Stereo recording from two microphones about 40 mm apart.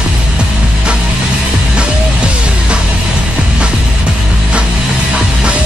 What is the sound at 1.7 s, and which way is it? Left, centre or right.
Music, right.